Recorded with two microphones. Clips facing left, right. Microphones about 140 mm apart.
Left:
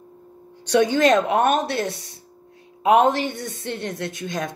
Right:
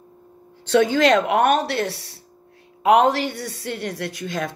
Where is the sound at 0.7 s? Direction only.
20° left (ahead or behind).